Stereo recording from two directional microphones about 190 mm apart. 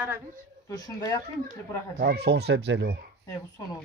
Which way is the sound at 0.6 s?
20° left (ahead or behind).